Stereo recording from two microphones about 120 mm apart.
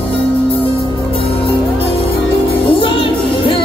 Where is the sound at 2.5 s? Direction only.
45° left (ahead or behind).